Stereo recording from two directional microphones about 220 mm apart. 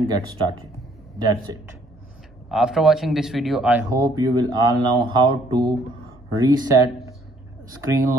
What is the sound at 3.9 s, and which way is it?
Speech, 15° right (ahead or behind).